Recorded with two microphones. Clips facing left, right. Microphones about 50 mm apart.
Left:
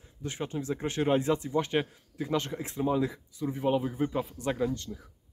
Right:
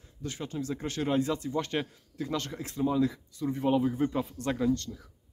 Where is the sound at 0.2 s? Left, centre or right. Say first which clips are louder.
Left 1 dB; left.